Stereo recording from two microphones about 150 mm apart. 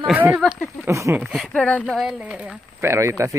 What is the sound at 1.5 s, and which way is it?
Speech, 10° left (ahead or behind).